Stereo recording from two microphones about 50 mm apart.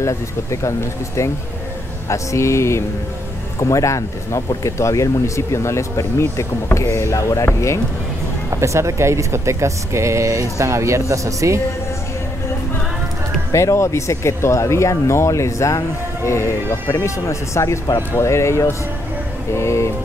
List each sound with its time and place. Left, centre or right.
0.0 s speech: left
3.5 s speech: left
8.5 s speech: right
13.5 s speech: left
16.3 s speech: left
18.2 s speech: left